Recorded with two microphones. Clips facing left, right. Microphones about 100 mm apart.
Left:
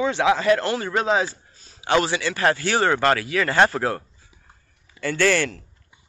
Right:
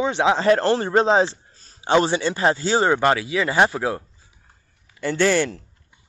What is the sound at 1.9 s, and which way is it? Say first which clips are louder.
Speech: right 3 dB; 20° right (ahead or behind).